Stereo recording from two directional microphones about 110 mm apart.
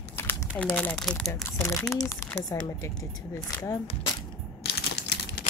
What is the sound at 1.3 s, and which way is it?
Speech, 25° left (ahead or behind).